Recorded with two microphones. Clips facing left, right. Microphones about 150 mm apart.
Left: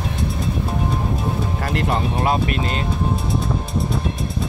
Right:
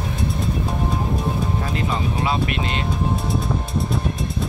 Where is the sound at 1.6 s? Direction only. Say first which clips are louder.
Left 2 dB; 65° left (ahead or behind).